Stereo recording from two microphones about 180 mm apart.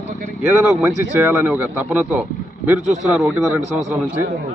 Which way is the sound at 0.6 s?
Centre (ahead or behind).